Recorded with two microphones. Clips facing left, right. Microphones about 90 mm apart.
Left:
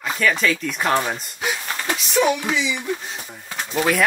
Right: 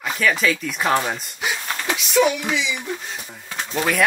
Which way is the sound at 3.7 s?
Centre (ahead or behind).